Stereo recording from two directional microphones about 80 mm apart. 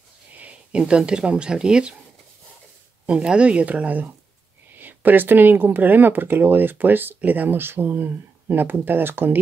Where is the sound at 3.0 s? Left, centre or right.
Centre.